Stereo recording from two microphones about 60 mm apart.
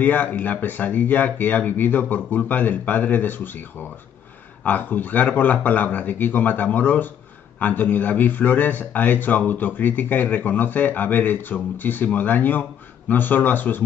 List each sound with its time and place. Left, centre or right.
0.0 s speech: left
4.6 s a man's voice: left